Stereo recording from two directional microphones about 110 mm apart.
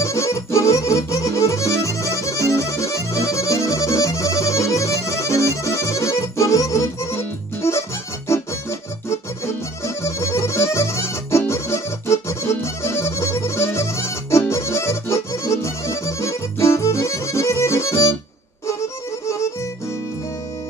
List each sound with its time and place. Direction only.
0.0 s music: 25° left (ahead or behind)
9.8 s music: 25° left (ahead or behind)